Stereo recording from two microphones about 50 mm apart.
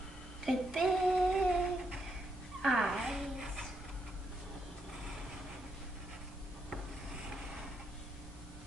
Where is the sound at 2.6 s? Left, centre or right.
Centre.